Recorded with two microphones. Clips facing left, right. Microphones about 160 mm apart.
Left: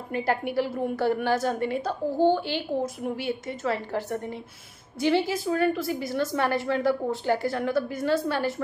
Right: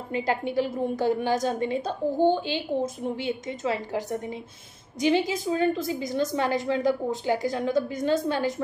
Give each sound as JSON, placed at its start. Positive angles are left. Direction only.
{"t": 0.1, "sound": "a woman's voice", "side_deg": -20}